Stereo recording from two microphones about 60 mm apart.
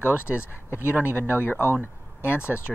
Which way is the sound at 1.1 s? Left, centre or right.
Left.